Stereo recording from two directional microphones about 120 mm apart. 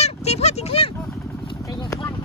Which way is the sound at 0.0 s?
60° left (ahead or behind).